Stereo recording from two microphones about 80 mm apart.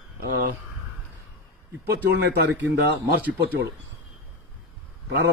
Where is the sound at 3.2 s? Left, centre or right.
Right.